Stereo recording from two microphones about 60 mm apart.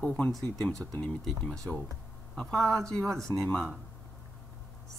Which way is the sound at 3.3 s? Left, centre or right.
Left.